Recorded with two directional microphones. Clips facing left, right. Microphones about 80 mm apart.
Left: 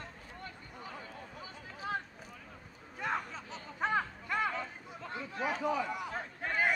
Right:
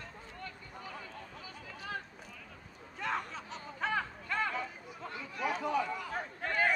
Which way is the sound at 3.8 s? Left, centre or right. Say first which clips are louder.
Left 2 dB; centre.